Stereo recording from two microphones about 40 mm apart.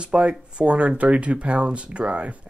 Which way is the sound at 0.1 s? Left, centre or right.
Right.